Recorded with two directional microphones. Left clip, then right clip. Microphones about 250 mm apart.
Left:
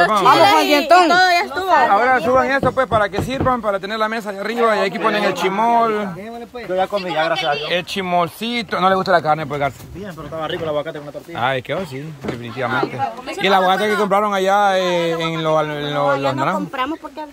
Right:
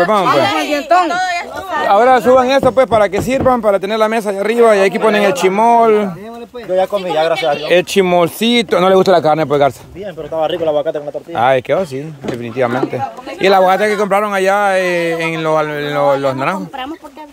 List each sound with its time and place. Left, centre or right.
0.3 s speech: left
2.0 s speech: right
6.7 s speech: right
7.7 s speech: right
10.4 s speech: centre
13.4 s speech: right